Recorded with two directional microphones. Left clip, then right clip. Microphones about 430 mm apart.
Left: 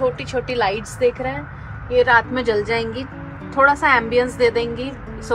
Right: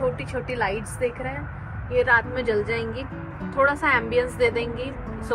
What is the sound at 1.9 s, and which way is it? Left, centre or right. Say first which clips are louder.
A woman's voice: left 5 dB; left.